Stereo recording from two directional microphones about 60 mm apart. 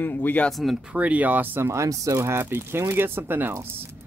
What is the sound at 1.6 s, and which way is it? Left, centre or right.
Speech, right.